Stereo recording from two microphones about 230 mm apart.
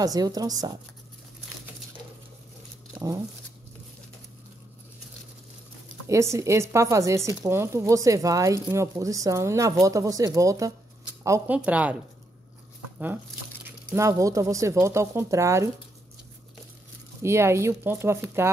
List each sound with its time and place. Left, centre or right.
0.0 s speech: centre
6.0 s speech: centre
13.9 s speech: centre
17.2 s speech: centre